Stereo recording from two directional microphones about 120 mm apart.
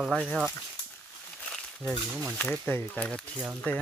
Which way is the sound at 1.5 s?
5° left (ahead or behind).